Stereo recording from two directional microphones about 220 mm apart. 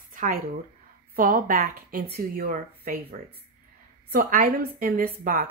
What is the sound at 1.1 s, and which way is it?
A woman's voice, 40° right (ahead or behind).